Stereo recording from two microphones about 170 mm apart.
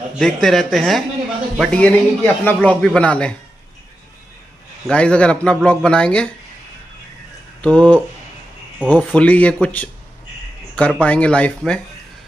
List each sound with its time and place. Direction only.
0.2 s a man's voice: centre (ahead or behind)
4.8 s a man's voice: 5° left (ahead or behind)
7.6 s a man's voice: 10° left (ahead or behind)